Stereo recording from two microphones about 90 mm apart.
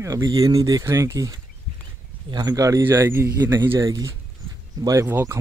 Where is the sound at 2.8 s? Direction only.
25° right (ahead or behind).